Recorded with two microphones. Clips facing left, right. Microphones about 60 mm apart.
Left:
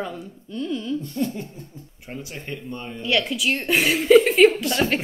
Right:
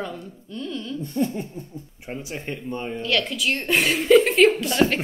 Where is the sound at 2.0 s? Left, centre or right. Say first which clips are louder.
Right 2 dB; right.